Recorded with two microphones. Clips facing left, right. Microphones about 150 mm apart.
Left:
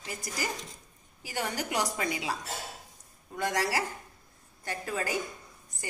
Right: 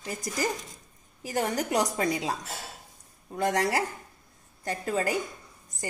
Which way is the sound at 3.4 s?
35° right (ahead or behind).